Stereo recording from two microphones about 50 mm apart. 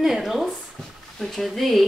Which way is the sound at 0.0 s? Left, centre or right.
Centre.